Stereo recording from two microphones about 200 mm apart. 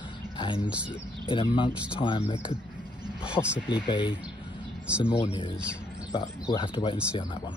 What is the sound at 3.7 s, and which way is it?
Speech, 25° left (ahead or behind).